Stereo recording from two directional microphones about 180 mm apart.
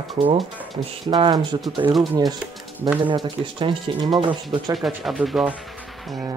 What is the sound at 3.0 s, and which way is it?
Speech, 25° right (ahead or behind).